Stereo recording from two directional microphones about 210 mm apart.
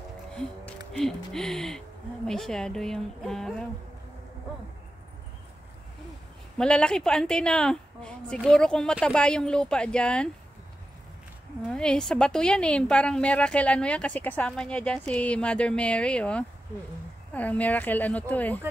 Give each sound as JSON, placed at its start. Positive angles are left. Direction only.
{"t": 0.3, "sound": "music", "side_deg": 5}
{"t": 0.9, "sound": "a woman's voice", "side_deg": 0}
{"t": 6.6, "sound": "a woman's voice", "side_deg": 5}
{"t": 11.7, "sound": "a woman's voice", "side_deg": 5}